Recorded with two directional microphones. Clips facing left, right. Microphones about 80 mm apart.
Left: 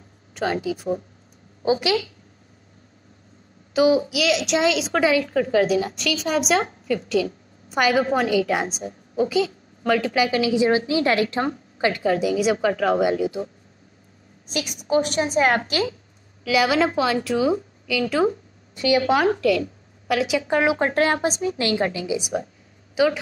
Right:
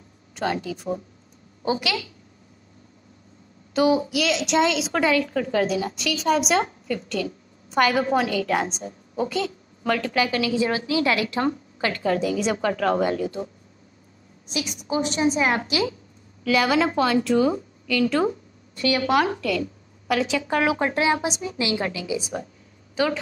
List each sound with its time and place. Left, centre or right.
0.3 s a woman's voice: centre; by 2.0 s left
3.7 s a woman's voice: centre
10.8 s a woman's voice: left
11.4 s a woman's voice: centre
15.0 s a woman's voice: left
16.4 s a woman's voice: centre
18.8 s a woman's voice: left
19.4 s a woman's voice: centre
20.3 s a woman's voice: left
20.9 s a woman's voice: left
21.7 s a woman's voice: left
23.0 s a woman's voice: centre